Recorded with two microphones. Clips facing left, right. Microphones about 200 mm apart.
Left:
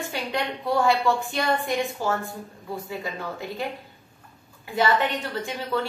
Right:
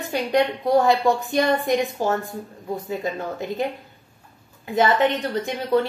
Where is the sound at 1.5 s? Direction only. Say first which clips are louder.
Right 5 dB; 20° right (ahead or behind).